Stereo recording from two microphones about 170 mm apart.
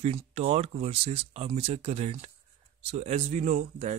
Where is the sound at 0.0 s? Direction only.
35° right (ahead or behind).